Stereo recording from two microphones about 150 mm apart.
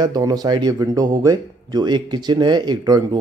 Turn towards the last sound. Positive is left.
turn(degrees=-30)  # may be behind; listen again after turning